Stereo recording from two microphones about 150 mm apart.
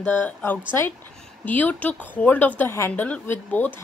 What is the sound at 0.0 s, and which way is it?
A woman's voice, 15° left (ahead or behind).